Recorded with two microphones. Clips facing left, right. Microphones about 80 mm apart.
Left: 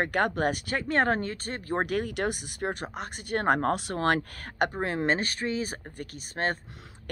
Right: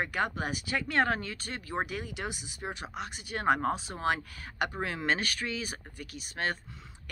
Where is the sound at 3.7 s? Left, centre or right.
Left.